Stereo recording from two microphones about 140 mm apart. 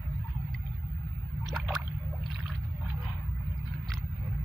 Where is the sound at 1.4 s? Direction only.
Centre (ahead or behind).